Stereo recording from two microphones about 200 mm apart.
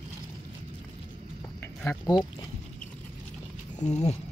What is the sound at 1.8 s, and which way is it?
Speech, 10° left (ahead or behind).